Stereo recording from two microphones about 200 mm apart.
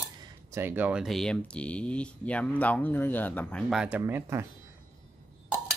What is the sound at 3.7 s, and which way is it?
Speech, 5° right (ahead or behind).